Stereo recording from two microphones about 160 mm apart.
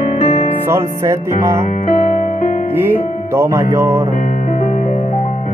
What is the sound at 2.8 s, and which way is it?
Speech, 15° right (ahead or behind).